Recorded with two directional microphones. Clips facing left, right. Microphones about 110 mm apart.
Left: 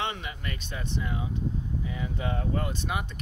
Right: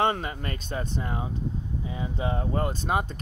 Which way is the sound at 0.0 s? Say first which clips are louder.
Right 7 dB; 40° right (ahead or behind).